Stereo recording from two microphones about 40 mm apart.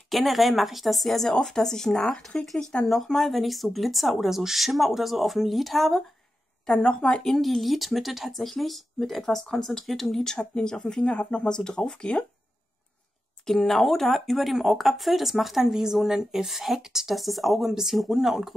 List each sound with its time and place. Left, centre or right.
0.1 s speech: centre
6.8 s speech: left
7.2 s speech: centre
13.5 s speech: centre
17.1 s speech: centre